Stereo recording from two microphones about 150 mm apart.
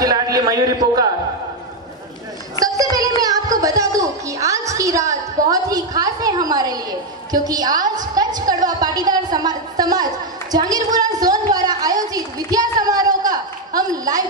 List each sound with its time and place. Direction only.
0.0 s a man's voice: 25° right (ahead or behind)
2.6 s a sound: 25° right (ahead or behind)
3.2 s a woman's voice: 25° right (ahead or behind)